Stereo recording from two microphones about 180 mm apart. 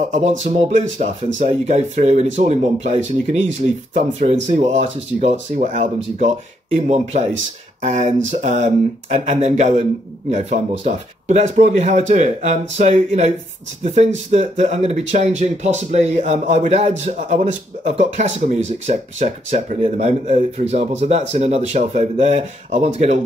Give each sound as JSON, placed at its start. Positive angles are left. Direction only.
{"t": 0.4, "sound": "speech", "side_deg": -40}